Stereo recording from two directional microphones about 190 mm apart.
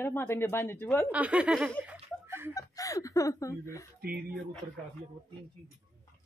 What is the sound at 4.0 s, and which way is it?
Speech, 50° right (ahead or behind).